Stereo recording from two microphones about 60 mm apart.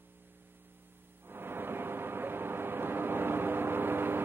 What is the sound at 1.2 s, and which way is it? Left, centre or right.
Vehicle, right.